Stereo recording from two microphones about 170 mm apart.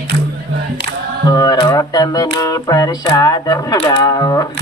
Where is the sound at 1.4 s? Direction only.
20° left (ahead or behind).